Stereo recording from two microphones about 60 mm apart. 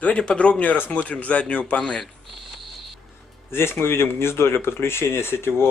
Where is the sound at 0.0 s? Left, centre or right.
Centre.